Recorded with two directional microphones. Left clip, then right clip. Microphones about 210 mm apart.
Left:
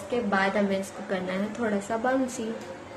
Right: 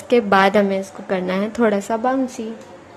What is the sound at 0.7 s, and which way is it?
A woman's voice, 30° right (ahead or behind).